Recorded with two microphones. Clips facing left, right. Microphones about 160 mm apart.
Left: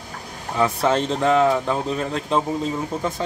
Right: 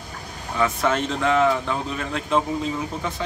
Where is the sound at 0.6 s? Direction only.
30° left (ahead or behind).